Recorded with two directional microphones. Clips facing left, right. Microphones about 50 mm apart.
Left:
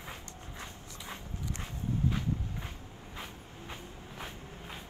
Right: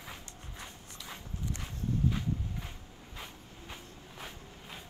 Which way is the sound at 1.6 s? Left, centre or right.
Left.